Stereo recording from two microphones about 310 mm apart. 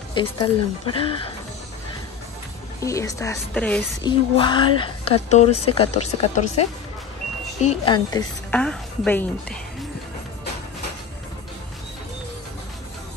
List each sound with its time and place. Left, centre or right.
0.1 s a woman's voice: centre
2.8 s a woman's voice: centre
4.4 s a woman's voice: centre